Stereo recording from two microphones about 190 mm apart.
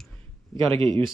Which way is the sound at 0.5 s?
25° right (ahead or behind).